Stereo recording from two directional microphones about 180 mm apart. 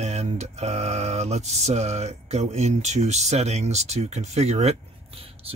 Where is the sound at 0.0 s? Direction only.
35° right (ahead or behind).